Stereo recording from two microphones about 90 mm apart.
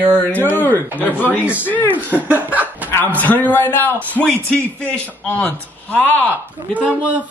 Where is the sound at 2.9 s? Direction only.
20° left (ahead or behind).